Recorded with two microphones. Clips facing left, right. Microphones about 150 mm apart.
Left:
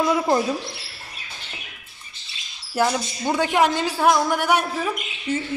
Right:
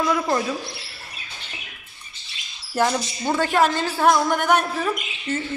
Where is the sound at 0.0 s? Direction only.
20° left (ahead or behind).